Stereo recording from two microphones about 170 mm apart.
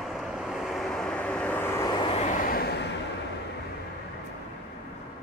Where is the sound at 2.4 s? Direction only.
60° left (ahead or behind).